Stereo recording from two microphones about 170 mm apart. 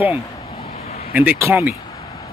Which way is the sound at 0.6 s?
35° left (ahead or behind).